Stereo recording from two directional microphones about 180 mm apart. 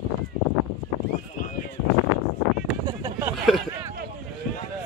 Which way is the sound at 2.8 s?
20° right (ahead or behind).